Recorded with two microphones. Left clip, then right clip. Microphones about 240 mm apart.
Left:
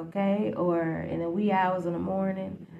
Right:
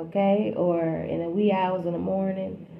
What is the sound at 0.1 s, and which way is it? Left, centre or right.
Speech, left.